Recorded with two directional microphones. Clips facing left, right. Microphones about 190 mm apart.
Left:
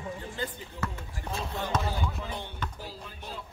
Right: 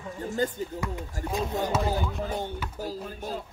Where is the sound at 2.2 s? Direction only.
45° right (ahead or behind).